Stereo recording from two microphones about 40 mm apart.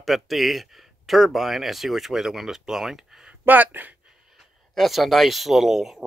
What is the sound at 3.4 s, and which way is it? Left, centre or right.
Speech, right.